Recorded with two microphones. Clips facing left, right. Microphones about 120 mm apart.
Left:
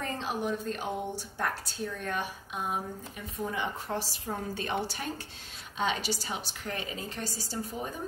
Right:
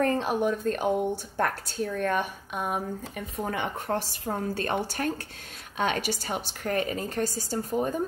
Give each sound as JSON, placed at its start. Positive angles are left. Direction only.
{"t": 0.0, "sound": "a woman's voice", "side_deg": -55}